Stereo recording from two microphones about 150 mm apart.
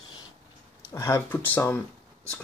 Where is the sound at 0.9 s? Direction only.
15° left (ahead or behind).